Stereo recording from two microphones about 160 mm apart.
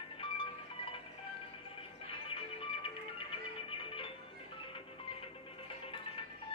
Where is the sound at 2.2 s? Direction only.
35° left (ahead or behind).